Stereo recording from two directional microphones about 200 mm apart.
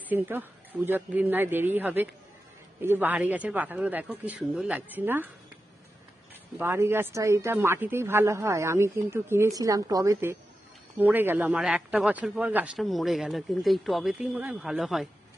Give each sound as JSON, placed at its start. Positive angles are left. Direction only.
{"t": 0.1, "sound": "speech", "side_deg": -10}
{"t": 6.6, "sound": "a man's voice", "side_deg": -10}